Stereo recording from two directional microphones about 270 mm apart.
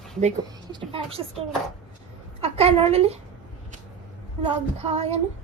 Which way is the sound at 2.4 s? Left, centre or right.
Right.